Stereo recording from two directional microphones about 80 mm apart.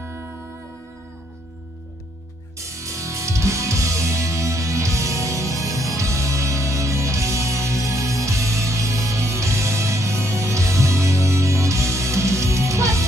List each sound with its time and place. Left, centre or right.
0.0 s music: right
2.7 s music: right